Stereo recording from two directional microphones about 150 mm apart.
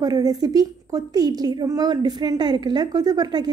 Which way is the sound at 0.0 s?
25° right (ahead or behind).